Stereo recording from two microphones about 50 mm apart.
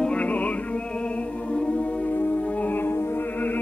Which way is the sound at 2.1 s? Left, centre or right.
Left.